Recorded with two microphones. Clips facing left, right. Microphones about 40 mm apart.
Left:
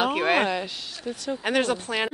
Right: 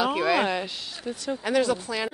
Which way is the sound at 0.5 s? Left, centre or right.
Centre.